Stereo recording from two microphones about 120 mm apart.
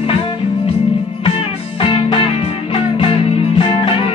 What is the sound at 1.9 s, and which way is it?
Music, 45° left (ahead or behind).